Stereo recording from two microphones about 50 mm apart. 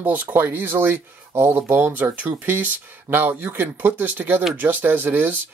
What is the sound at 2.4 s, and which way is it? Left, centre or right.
Speech, right.